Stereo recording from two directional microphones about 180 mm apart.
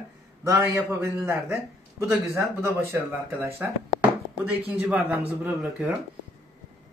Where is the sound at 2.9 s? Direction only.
15° right (ahead or behind).